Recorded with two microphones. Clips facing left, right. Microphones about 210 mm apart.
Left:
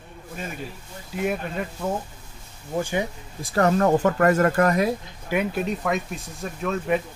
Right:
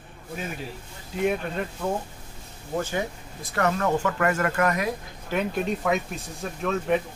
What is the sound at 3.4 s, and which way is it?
Speech, 30° left (ahead or behind).